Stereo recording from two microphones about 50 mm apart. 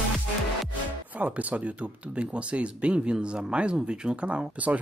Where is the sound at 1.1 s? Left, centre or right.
Right.